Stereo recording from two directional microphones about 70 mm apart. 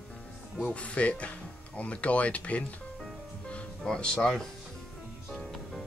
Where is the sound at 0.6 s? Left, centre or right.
Centre.